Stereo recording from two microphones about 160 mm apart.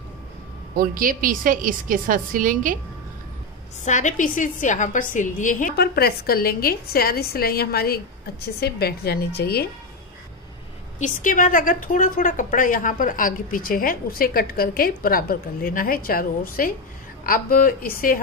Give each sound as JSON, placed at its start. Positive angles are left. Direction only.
{"t": 0.7, "sound": "a woman's voice", "side_deg": -60}
{"t": 3.8, "sound": "a woman's voice", "side_deg": 50}
{"t": 5.8, "sound": "a woman's voice", "side_deg": 75}
{"t": 11.0, "sound": "a woman's voice", "side_deg": 55}